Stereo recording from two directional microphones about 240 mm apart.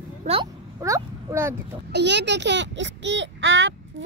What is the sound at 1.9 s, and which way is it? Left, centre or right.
A child's voice, right.